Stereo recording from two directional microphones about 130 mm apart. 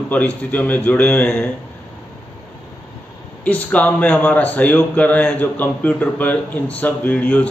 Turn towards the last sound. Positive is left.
turn(degrees=10)  # may be behind; listen again after turning